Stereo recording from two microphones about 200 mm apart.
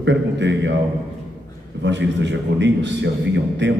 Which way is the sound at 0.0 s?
60° right (ahead or behind).